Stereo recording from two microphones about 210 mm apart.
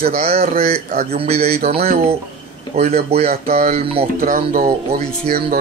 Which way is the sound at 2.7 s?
30° right (ahead or behind).